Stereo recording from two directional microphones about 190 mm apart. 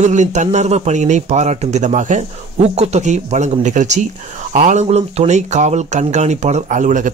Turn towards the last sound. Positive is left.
turn(degrees=-40)  # may be behind; listen again after turning